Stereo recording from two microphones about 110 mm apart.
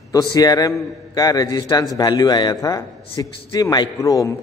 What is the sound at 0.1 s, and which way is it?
A man's voice, 35° left (ahead or behind).